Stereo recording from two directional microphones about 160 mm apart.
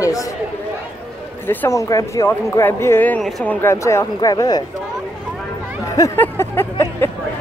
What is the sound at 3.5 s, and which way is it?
Speech, 15° left (ahead or behind).